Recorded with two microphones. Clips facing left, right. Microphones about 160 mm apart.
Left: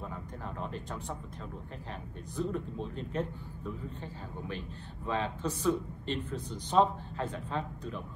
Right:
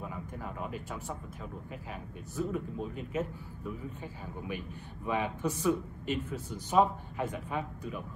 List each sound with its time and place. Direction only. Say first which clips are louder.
0.0 s speech: right 1 dB; 10° right (ahead or behind)
2.3 s a man's voice: even; 5° right (ahead or behind)